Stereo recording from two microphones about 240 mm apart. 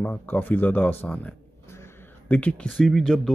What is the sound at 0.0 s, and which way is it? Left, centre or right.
Speech, centre.